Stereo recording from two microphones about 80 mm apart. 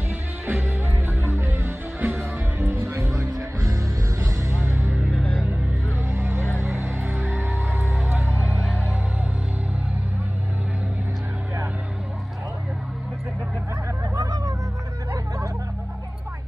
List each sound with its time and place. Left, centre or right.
0.5 s music: right
3.3 s music: right
4.6 s music: right
5.1 s music: centre
6.0 s vehicle: right
6.6 s music: right; by 8.6 s centre
14.1 s music: right